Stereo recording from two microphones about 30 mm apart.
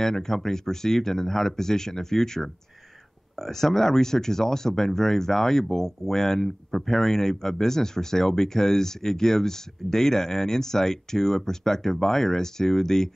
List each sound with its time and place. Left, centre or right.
0.0 s speech: centre